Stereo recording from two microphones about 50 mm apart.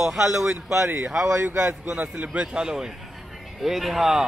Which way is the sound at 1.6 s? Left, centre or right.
Right.